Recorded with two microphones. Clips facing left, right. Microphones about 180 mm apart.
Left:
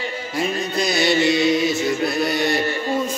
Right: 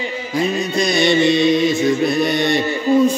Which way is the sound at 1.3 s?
5° left (ahead or behind).